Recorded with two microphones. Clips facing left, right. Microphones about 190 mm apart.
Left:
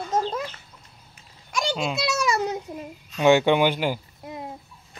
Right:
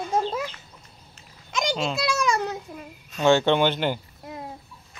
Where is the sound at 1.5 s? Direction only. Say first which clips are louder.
Even; 20° right (ahead or behind).